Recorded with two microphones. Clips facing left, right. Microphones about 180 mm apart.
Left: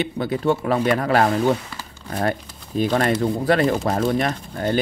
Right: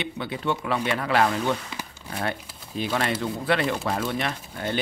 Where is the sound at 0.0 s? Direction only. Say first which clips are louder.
Left 8 dB; 40° left (ahead or behind).